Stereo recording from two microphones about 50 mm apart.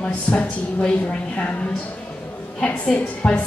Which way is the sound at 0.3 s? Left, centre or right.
Left.